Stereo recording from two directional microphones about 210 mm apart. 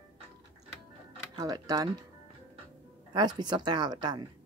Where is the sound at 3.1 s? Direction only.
20° right (ahead or behind).